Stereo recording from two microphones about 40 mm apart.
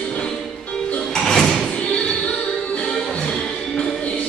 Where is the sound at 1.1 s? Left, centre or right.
Centre.